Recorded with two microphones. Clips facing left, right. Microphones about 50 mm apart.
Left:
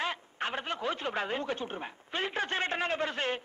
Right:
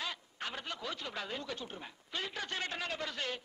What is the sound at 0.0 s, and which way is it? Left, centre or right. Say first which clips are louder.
A woman's voice: left 7 dB; left.